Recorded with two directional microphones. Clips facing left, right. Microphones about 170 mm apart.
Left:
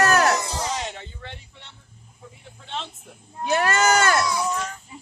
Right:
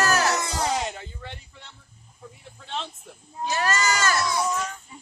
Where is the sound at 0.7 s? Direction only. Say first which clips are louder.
Right 2 dB; centre (ahead or behind).